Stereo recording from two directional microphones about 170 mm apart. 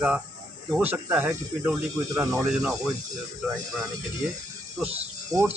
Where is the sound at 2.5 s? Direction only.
Centre (ahead or behind).